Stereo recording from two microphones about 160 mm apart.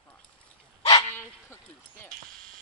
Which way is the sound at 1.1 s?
15° left (ahead or behind).